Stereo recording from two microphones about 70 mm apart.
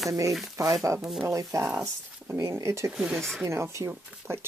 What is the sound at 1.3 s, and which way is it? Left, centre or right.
Speech, right.